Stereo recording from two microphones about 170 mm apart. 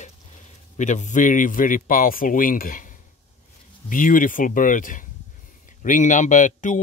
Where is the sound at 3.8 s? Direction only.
50° left (ahead or behind).